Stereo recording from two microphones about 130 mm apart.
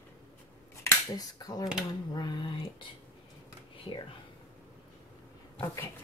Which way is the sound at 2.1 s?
35° left (ahead or behind).